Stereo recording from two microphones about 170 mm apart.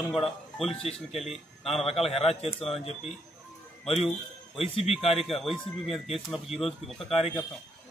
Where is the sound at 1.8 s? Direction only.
35° left (ahead or behind).